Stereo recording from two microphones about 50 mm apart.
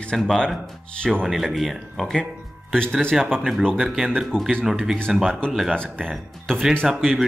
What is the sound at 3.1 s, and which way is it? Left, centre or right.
Speech, centre.